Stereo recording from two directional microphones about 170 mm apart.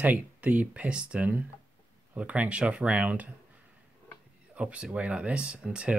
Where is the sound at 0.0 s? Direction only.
10° right (ahead or behind).